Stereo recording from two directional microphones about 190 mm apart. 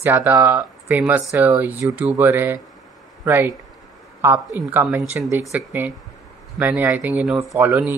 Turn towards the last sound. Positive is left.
turn(degrees=-10)  # may be behind; listen again after turning